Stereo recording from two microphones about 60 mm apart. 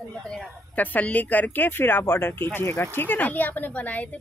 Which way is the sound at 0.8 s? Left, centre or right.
Left.